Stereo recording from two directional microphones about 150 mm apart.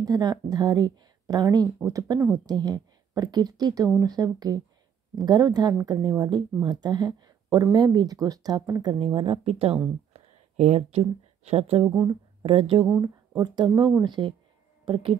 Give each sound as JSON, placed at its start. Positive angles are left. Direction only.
{"t": 0.0, "sound": "a woman's voice", "side_deg": -25}
{"t": 11.9, "sound": "speech", "side_deg": -25}
{"t": 12.8, "sound": "speech", "side_deg": -20}
{"t": 13.6, "sound": "speech", "side_deg": -35}